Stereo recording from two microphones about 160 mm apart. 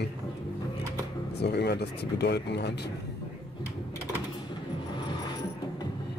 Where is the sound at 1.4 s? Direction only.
90° left.